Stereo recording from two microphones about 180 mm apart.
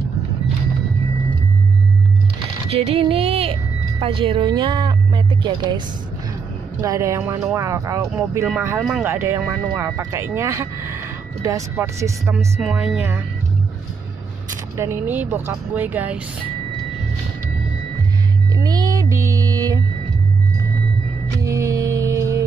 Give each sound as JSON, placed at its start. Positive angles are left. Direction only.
{"t": 2.7, "sound": "a sound", "side_deg": -35}
{"t": 4.5, "sound": "speech", "side_deg": -25}
{"t": 6.8, "sound": "speech", "side_deg": -15}
{"t": 12.5, "sound": "speech", "side_deg": -5}
{"t": 14.8, "sound": "speech", "side_deg": -10}
{"t": 18.6, "sound": "a sound", "side_deg": -20}
{"t": 21.5, "sound": "music", "side_deg": -15}